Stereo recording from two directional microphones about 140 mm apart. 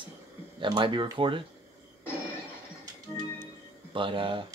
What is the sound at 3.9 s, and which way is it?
Speech, 35° right (ahead or behind).